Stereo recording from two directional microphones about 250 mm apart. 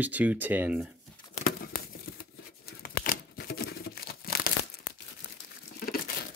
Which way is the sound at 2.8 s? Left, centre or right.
Left.